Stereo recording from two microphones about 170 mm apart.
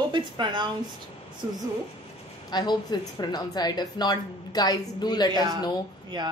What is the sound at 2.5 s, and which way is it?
A woman's voice, 25° left (ahead or behind).